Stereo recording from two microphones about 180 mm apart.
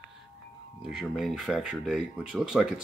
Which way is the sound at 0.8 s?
Centre (ahead or behind).